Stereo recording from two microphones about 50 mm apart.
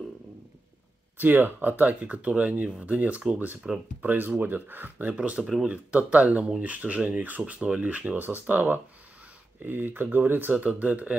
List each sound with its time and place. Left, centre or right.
1.1 s speech: right
5.1 s speech: right
10.6 s speech: right